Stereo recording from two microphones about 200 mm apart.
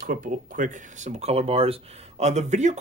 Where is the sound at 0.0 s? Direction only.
45° right (ahead or behind).